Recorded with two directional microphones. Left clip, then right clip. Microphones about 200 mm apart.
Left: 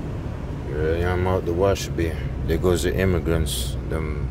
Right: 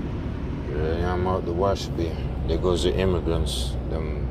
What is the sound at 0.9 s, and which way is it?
Vehicle, 50° left (ahead or behind).